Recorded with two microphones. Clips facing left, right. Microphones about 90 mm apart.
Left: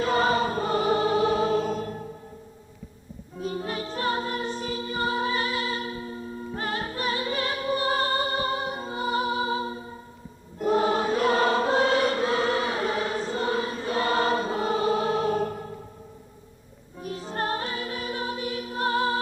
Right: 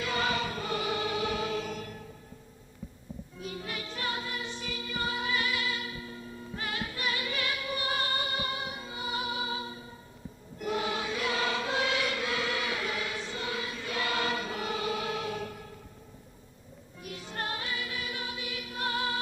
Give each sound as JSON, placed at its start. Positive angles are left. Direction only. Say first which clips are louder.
{"t": 0.0, "sound": "music", "louder": "left 8 dB", "side_deg": 40}
{"t": 3.3, "sound": "music", "louder": "left 9 dB", "side_deg": 35}
{"t": 10.6, "sound": "choir", "louder": "left 9 dB", "side_deg": 40}
{"t": 17.0, "sound": "music", "louder": "left 8 dB", "side_deg": 35}